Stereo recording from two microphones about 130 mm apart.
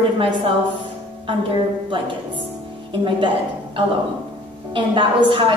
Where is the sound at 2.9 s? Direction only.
40° right (ahead or behind).